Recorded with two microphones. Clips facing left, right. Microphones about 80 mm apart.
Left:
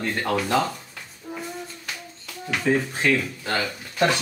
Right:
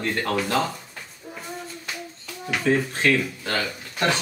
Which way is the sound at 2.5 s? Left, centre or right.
Centre.